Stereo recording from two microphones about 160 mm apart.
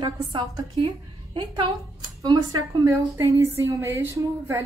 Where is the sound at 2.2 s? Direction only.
25° right (ahead or behind).